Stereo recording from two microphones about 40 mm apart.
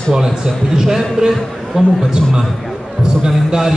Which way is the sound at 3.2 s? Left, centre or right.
Centre.